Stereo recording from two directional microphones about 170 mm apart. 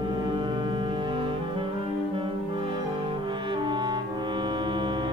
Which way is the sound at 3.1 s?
30° right (ahead or behind).